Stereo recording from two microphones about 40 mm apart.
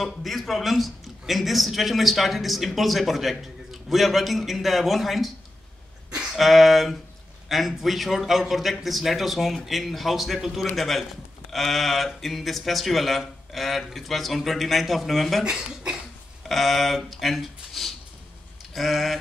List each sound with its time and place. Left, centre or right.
0.0 s speech: centre
6.0 s a sound: right
6.3 s speech: centre
15.4 s speech: right
16.4 s speech: centre
18.7 s a sound: centre